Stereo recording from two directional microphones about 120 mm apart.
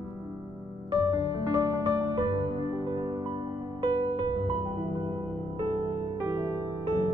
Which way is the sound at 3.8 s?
45° right (ahead or behind).